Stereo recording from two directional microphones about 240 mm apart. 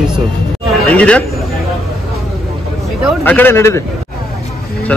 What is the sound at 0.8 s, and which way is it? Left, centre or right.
Speech, centre.